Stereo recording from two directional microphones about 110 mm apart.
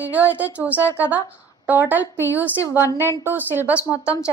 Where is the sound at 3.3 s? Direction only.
20° right (ahead or behind).